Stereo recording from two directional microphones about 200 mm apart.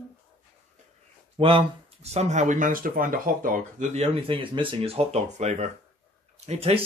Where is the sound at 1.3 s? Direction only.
30° right (ahead or behind).